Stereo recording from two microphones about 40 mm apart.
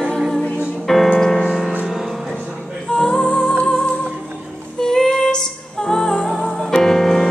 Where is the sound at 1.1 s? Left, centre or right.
Centre.